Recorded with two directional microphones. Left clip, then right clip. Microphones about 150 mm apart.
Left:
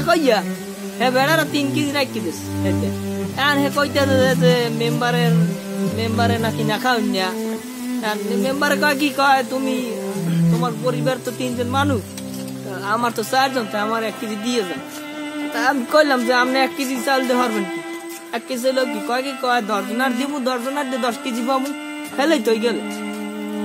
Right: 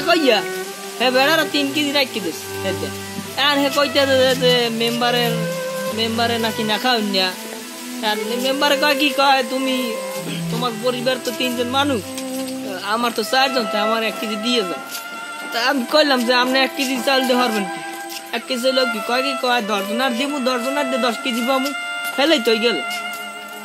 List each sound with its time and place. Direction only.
0.0 s speech: 10° left (ahead or behind)
3.3 s speech: 15° left (ahead or behind)
14.4 s speech: 15° left (ahead or behind)
22.1 s speech: 10° left (ahead or behind)